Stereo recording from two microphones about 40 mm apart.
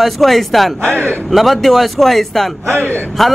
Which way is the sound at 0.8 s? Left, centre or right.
Right.